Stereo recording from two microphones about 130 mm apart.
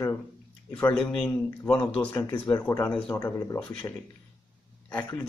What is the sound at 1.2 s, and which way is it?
Speech, 10° left (ahead or behind).